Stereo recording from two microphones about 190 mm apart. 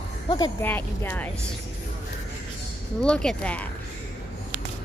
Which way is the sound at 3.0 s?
5° left (ahead or behind).